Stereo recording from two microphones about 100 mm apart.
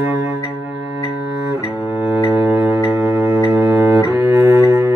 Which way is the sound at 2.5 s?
30° right (ahead or behind).